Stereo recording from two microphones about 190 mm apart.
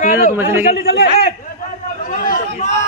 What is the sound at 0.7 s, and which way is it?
Speech, 55° left (ahead or behind).